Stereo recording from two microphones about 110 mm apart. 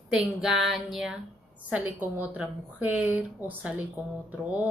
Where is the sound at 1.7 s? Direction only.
15° right (ahead or behind).